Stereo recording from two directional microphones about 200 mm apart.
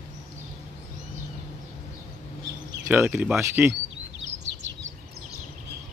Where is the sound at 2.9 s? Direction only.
10° right (ahead or behind).